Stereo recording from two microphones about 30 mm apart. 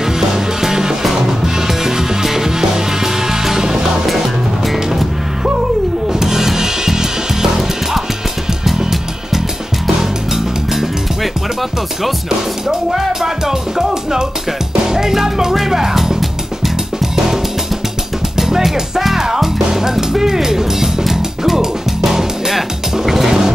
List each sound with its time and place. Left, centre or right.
0.0 s music: centre
6.0 s music: centre
10.3 s music: centre
13.2 s music: centre
22.0 s music: centre